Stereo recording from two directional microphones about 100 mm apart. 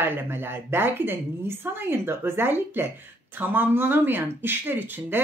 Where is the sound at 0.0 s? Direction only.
20° right (ahead or behind).